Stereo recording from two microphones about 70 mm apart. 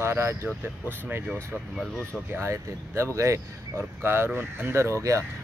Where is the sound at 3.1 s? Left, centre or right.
Right.